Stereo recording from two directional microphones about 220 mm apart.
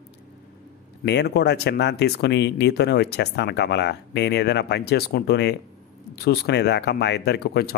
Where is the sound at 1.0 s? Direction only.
50° left (ahead or behind).